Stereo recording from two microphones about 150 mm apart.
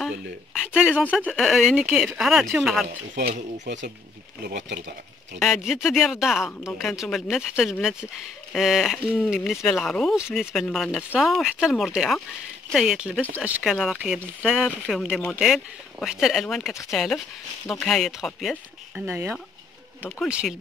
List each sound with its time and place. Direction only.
0.0 s a sound: 5° right (ahead or behind)
1.3 s speech: centre (ahead or behind)
3.3 s speech: 55° right (ahead or behind)
5.4 s speech: centre (ahead or behind)
19.0 s speech: 15° right (ahead or behind)